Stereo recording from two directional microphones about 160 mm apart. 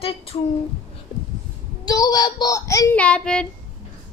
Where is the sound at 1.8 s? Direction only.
25° left (ahead or behind).